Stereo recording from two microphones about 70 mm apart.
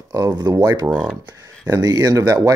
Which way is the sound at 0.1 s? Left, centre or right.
Right.